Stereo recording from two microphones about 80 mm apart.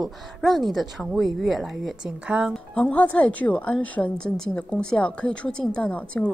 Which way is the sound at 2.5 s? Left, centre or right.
Centre.